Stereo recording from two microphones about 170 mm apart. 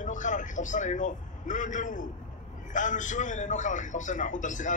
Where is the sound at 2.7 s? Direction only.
50° left (ahead or behind).